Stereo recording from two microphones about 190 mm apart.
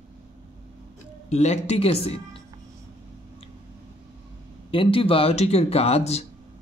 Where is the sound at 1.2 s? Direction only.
35° left (ahead or behind).